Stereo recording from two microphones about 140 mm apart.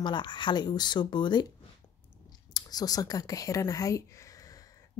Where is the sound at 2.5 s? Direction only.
25° left (ahead or behind).